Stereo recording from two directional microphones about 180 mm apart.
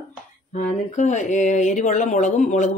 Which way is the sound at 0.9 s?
40° left (ahead or behind).